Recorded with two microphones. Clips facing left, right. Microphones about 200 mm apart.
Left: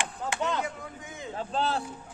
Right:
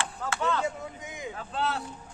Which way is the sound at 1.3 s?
30° left (ahead or behind).